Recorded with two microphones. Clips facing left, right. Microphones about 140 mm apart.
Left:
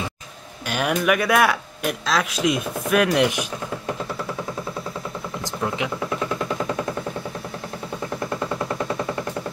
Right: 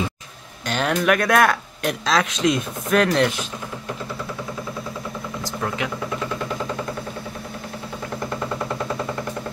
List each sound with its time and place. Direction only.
0.7 s speech: 10° left (ahead or behind)